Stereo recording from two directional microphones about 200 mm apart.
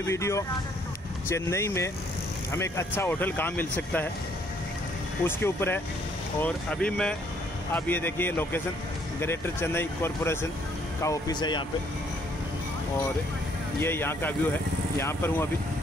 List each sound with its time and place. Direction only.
0.0 s speech: 15° left (ahead or behind)
5.2 s speech: 10° left (ahead or behind)
13.7 s speech: 10° left (ahead or behind)